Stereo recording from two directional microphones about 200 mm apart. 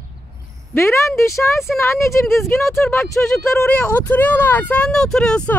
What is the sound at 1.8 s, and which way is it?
Speech, 15° left (ahead or behind).